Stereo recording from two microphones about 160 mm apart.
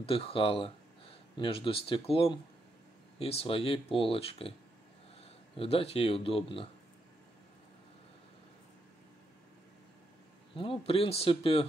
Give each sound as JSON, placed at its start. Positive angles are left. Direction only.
{"t": 0.0, "sound": "speech", "side_deg": 35}
{"t": 5.6, "sound": "speech", "side_deg": 35}
{"t": 10.5, "sound": "speech", "side_deg": 35}